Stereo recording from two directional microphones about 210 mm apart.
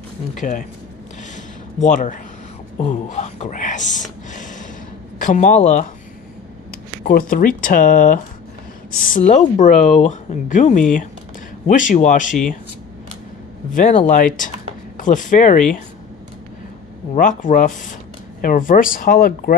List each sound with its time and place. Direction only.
0.4 s speech: 35° left (ahead or behind)
1.3 s a sound: 35° left (ahead or behind)
5.2 s speech: 35° left (ahead or behind)
7.1 s speech: 40° left (ahead or behind)
13.7 s speech: 35° left (ahead or behind)
17.1 s speech: 40° left (ahead or behind)